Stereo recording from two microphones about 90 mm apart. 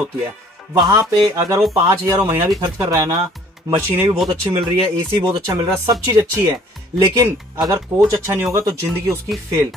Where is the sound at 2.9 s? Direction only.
40° right (ahead or behind).